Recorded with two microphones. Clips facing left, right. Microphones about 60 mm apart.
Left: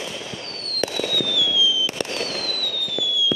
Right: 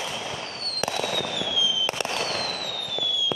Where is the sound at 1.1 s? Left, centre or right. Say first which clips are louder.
Left 4 dB; right.